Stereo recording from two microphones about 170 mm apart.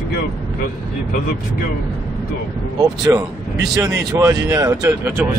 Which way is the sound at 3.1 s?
15° right (ahead or behind).